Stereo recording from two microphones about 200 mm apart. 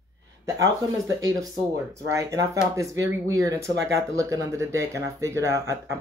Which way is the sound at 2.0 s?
15° right (ahead or behind).